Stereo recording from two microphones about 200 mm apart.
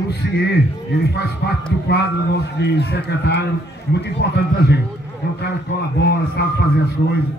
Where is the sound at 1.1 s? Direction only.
55° left (ahead or behind).